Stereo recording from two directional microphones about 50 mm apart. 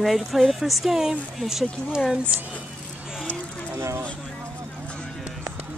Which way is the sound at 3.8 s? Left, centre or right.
Right.